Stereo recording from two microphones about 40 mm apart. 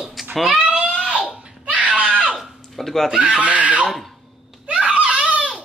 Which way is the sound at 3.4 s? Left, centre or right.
Right.